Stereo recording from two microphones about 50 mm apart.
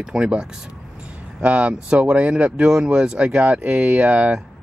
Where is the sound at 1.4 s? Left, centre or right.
Right.